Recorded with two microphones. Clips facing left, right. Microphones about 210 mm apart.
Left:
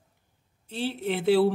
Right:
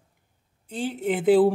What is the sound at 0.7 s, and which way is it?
Speech, 15° right (ahead or behind).